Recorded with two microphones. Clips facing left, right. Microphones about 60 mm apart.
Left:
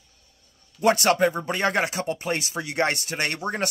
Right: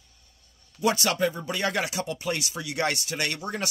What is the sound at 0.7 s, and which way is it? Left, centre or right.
Speech, left.